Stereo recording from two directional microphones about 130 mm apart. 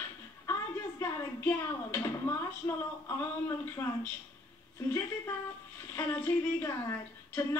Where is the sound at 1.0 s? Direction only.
20° left (ahead or behind).